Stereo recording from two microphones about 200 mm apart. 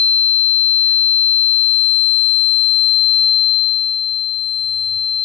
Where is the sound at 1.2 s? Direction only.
5° left (ahead or behind).